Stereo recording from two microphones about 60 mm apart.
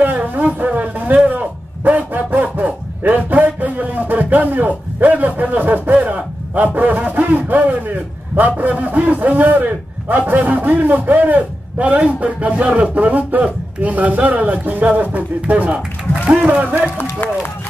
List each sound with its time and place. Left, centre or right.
0.0 s a sound: right
8.4 s a man's voice: right
17.0 s speech: left